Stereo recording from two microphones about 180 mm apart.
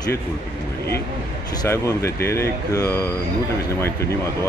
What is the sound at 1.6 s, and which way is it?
A man's voice, 20° left (ahead or behind).